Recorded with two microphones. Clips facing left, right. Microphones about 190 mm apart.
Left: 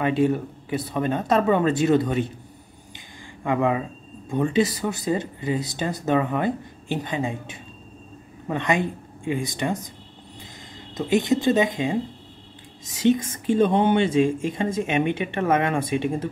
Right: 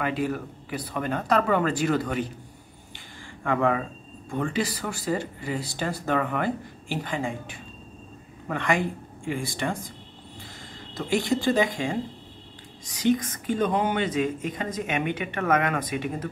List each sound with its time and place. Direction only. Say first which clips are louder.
0.0 s speech: left 6 dB; 25° left (ahead or behind)
3.4 s speech: left 2 dB; 15° left (ahead or behind)
11.0 s speech: left 4 dB; 20° left (ahead or behind)